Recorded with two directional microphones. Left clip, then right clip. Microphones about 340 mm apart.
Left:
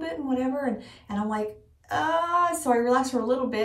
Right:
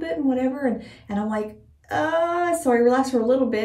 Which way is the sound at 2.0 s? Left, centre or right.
Centre.